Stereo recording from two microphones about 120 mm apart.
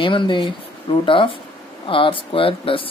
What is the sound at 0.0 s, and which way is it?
Speech, 45° left (ahead or behind).